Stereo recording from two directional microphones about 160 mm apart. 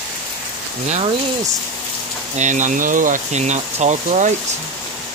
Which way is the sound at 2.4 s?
50° right (ahead or behind).